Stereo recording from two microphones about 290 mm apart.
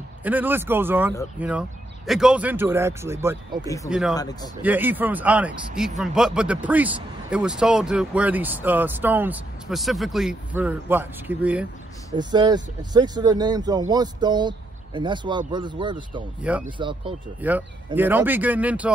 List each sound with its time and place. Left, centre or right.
0.2 s speech: centre
3.6 s speech: centre
4.6 s speech: centre
17.4 s speech: centre